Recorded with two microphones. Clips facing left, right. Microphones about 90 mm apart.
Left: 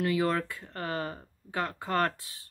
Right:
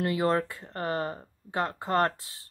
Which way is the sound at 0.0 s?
30° right (ahead or behind).